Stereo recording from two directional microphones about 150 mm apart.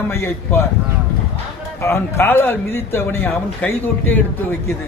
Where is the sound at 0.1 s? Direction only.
15° left (ahead or behind).